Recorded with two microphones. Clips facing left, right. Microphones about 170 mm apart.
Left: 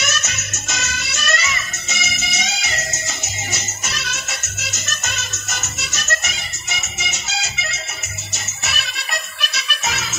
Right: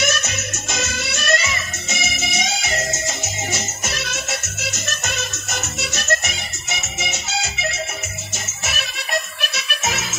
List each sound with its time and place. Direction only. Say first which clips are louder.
0.0 s music: right 5 dB; 55° right (ahead or behind)
3.9 s music: even; 55° right (ahead or behind)
5.8 s music: right 6 dB; 55° right (ahead or behind)
8.3 s music: left 2 dB; 50° right (ahead or behind)